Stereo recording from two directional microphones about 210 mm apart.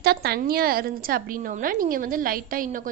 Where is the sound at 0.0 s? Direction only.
50° right (ahead or behind).